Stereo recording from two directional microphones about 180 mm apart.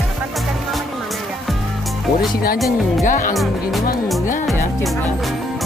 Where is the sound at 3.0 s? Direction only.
45° left (ahead or behind).